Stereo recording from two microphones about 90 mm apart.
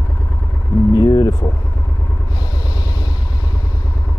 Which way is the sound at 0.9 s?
50° left (ahead or behind).